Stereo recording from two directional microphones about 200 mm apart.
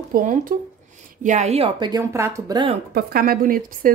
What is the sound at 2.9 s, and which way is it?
Speech, 50° right (ahead or behind).